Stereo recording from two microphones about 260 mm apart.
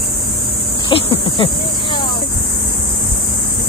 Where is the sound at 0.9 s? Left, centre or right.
Centre.